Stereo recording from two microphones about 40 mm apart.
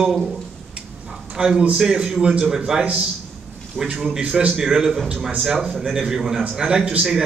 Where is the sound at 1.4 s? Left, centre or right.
Centre.